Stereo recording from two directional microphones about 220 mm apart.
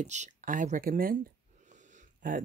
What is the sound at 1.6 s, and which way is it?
Wheeze, 35° right (ahead or behind).